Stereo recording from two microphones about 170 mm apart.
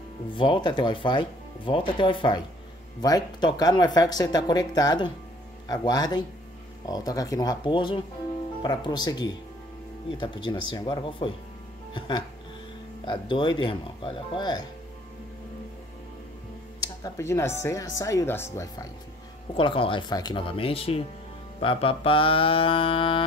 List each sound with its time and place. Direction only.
0.3 s speech: 30° left (ahead or behind)
13.0 s speech: 30° left (ahead or behind)
16.8 s speech: 20° left (ahead or behind)
19.5 s mantra: 30° left (ahead or behind)